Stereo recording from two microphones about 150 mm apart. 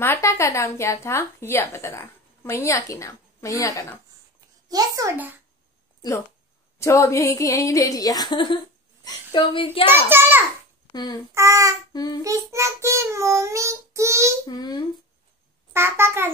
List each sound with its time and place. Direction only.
0.0 s speech: 20° left (ahead or behind)
4.6 s a child's voice: 25° right (ahead or behind)
6.8 s a woman's voice: 20° left (ahead or behind); by 9.8 s 35° left (ahead or behind)
9.8 s a child's voice: 15° right (ahead or behind)
10.9 s speech: 25° left (ahead or behind)
11.3 s child singing: 20° right (ahead or behind)
11.9 s child singing: 25° left (ahead or behind)
12.2 s child singing: 20° right (ahead or behind)
14.4 s speech: 25° left (ahead or behind)
15.7 s a child's voice: 15° right (ahead or behind)